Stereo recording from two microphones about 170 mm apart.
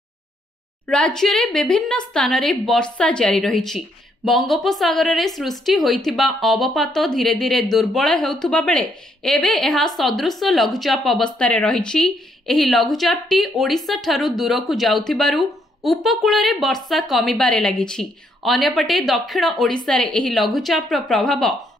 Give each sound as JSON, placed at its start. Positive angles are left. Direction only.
{"t": 0.8, "sound": "a woman's voice", "side_deg": 5}